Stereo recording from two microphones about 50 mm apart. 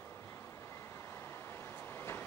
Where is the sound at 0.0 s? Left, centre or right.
Left.